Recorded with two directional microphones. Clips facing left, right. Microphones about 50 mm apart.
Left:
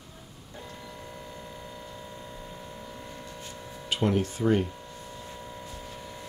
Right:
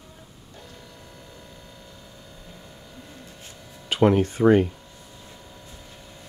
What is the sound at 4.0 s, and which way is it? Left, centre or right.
Speech, right.